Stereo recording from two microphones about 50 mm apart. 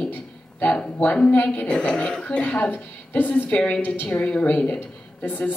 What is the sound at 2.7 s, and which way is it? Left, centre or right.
Speech, left.